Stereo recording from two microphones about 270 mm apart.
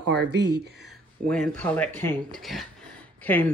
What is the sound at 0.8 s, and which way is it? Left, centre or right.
Speech, centre.